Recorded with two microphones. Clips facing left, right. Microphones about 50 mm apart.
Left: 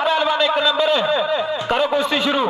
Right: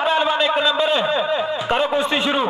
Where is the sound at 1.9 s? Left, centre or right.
Centre.